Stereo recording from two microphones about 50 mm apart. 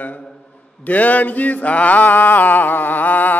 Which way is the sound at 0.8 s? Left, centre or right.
Left.